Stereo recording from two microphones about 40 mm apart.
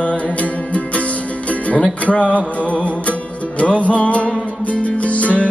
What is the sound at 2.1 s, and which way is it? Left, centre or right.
Music, left.